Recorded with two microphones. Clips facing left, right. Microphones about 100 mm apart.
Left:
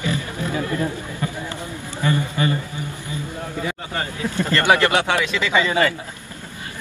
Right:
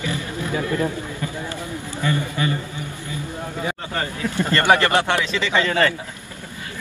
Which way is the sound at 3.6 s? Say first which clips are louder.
Right 1 dB; 25° right (ahead or behind).